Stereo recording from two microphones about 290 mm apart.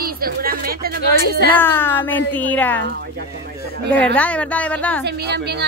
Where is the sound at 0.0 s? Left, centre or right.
Right.